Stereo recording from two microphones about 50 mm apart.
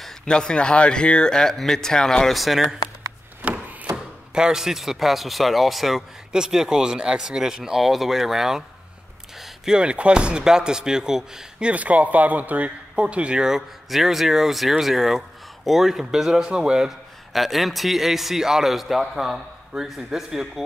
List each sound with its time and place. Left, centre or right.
0.0 s speech: centre
2.3 s a man's voice: centre
3.4 s a sound: right
3.9 s speech: centre
9.8 s speech: right
11.6 s a man's voice: right
13.4 s a man's voice: centre
17.3 s a man's voice: centre